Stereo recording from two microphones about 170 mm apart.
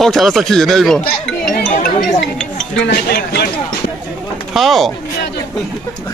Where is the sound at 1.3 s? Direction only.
5° left (ahead or behind).